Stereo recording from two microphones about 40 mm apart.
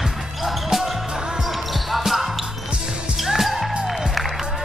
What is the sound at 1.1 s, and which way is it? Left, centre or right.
Basketball bounce, centre.